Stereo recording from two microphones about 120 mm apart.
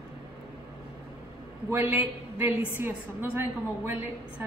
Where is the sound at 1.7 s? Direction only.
15° right (ahead or behind).